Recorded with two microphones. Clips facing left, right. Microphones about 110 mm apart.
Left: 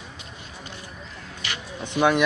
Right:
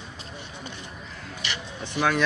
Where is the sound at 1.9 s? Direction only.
15° left (ahead or behind).